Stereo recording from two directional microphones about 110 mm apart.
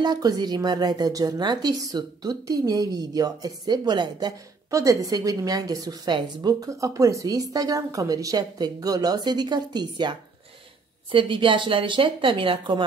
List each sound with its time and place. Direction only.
0.0 s a woman's voice: 40° right (ahead or behind)
4.6 s a woman's voice: 30° right (ahead or behind); by 12.8 s 50° right (ahead or behind)